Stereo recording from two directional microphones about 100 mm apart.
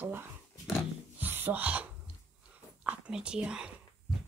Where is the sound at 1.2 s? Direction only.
20° right (ahead or behind).